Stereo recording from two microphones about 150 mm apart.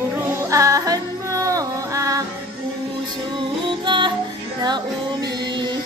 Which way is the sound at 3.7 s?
30° right (ahead or behind).